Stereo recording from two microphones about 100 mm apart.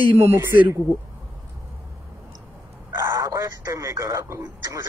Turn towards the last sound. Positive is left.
turn(degrees=-30)  # may be behind; listen again after turning